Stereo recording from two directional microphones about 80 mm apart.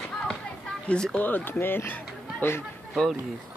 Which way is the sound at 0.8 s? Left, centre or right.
Centre.